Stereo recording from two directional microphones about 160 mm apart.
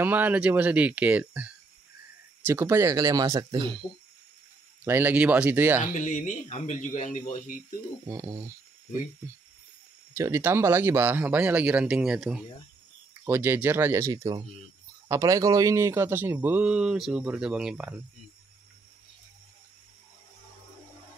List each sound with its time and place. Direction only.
0.0 s speech: 10° right (ahead or behind); by 3.8 s 30° right (ahead or behind)
4.8 s speech: 10° right (ahead or behind)
5.9 s speech: 50° left (ahead or behind)
8.1 s speech: 20° right (ahead or behind)
10.1 s speech: 15° right (ahead or behind)
13.2 s speech: 15° right (ahead or behind)